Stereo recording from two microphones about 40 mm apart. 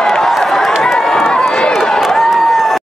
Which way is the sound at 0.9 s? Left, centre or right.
Centre.